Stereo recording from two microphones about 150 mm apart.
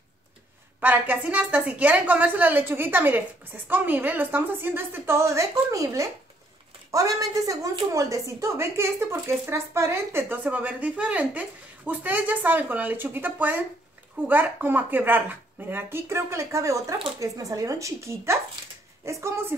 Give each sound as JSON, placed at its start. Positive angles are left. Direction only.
{"t": 0.7, "sound": "speech", "side_deg": -10}